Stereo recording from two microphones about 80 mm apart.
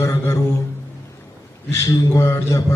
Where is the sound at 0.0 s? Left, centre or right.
Left.